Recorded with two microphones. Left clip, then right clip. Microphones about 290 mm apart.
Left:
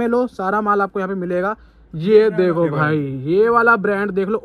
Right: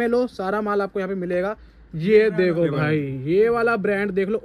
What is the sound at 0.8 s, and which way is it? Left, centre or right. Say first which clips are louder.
Speech: left 3 dB; left.